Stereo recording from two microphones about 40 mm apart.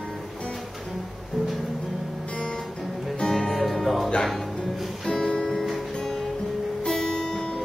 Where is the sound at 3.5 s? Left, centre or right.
Centre.